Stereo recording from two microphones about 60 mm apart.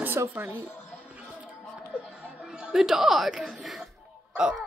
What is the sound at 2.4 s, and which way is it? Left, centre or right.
Speech, centre.